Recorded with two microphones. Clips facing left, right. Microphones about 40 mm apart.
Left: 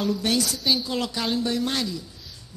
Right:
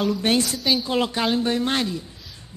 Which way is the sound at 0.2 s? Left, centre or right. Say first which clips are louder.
Right 3 dB; right.